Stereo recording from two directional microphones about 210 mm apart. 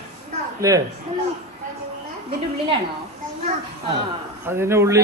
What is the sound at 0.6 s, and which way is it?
Speech, 15° right (ahead or behind).